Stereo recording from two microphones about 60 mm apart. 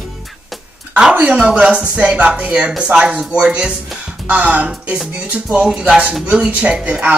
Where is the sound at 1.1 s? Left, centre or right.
Right.